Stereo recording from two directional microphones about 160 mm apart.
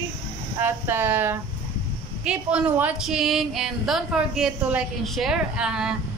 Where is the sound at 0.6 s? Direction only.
15° right (ahead or behind).